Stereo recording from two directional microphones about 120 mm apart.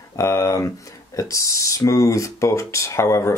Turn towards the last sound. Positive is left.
turn(degrees=20)  # may be behind; listen again after turning